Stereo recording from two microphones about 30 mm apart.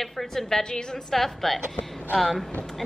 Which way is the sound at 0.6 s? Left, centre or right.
Left.